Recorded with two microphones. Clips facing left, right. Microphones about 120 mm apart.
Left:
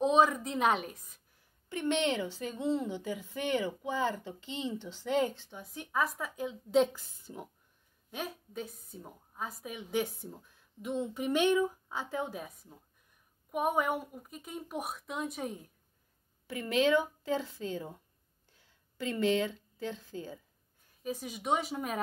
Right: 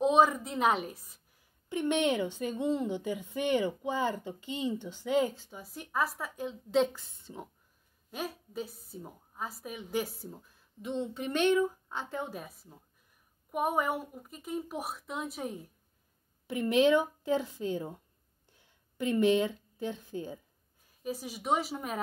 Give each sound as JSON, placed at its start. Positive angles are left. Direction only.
{"t": 0.0, "sound": "a woman's voice", "side_deg": -5}
{"t": 1.7, "sound": "a woman's voice", "side_deg": -15}
{"t": 16.4, "sound": "a woman's voice", "side_deg": -15}
{"t": 21.0, "sound": "a woman's voice", "side_deg": -5}